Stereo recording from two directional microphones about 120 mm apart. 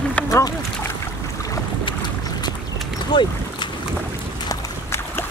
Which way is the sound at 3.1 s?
40° left (ahead or behind).